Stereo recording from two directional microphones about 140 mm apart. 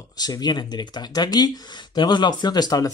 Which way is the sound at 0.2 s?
30° left (ahead or behind).